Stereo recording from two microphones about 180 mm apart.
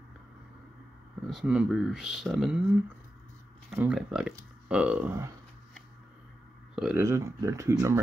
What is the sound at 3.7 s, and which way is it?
Speech, 5° right (ahead or behind).